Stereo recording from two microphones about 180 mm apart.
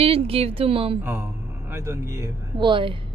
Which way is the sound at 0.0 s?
30° right (ahead or behind).